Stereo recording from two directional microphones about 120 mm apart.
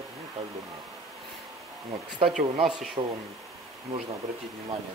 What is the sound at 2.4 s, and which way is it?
Speech, 40° right (ahead or behind).